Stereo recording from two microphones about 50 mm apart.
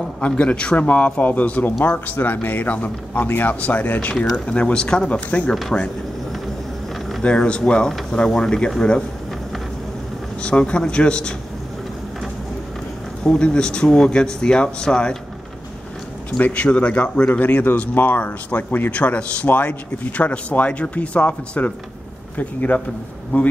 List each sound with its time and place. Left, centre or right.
0.2 s a man's voice: left
5.5 s a man's voice: centre
7.2 s a man's voice: centre
10.4 s a man's voice: left
13.2 s speech: centre
16.3 s a man's voice: left
16.6 s a man's voice: left
18.9 s a man's voice: left